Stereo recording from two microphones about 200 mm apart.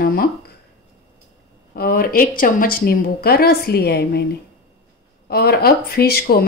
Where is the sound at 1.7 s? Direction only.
45° left (ahead or behind).